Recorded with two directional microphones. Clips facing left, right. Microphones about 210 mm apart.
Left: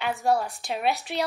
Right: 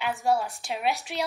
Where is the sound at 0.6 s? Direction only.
10° right (ahead or behind).